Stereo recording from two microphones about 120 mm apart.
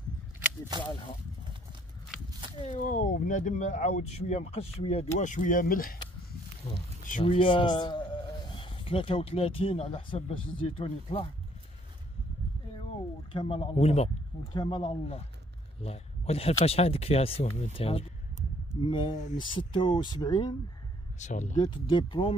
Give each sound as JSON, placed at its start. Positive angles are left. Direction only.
{"t": 0.7, "sound": "speech", "side_deg": -35}
{"t": 2.6, "sound": "speech", "side_deg": 90}
{"t": 6.6, "sound": "speech", "side_deg": 55}
{"t": 7.2, "sound": "speech", "side_deg": 45}
{"t": 13.3, "sound": "speech", "side_deg": 45}
{"t": 14.5, "sound": "speech", "side_deg": 40}
{"t": 15.8, "sound": "speech", "side_deg": 55}
{"t": 21.2, "sound": "speech", "side_deg": 85}
{"t": 21.5, "sound": "speech", "side_deg": 40}